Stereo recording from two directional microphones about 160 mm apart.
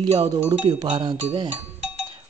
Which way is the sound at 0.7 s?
30° right (ahead or behind).